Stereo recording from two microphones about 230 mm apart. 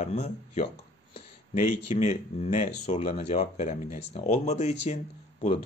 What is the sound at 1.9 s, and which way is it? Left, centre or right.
Speech, left.